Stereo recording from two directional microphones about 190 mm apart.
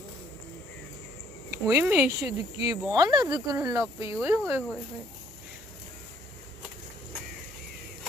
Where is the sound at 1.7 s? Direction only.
10° right (ahead or behind).